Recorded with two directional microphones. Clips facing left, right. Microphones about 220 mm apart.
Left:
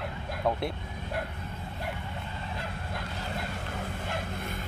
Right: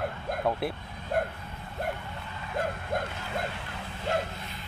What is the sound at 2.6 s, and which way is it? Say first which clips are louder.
Speech: right 7 dB; 50° right (ahead or behind).